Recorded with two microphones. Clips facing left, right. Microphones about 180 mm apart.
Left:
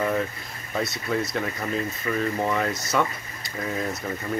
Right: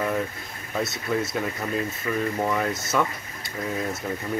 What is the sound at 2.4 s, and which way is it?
Speech, 5° right (ahead or behind).